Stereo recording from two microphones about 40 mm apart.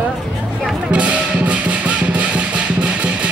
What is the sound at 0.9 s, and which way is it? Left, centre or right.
Music, right.